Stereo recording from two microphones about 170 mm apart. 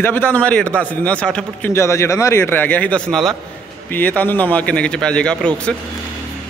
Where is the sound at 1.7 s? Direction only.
15° left (ahead or behind).